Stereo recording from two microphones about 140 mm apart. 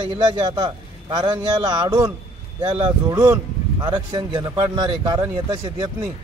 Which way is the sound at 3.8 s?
35° right (ahead or behind).